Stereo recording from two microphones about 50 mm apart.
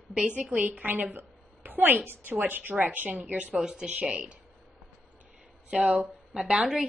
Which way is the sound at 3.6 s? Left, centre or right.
Centre.